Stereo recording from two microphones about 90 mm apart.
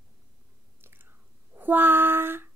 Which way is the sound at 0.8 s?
25° right (ahead or behind).